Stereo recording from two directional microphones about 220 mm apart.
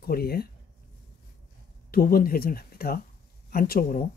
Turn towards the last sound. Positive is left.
turn(degrees=40)  # may be behind; listen again after turning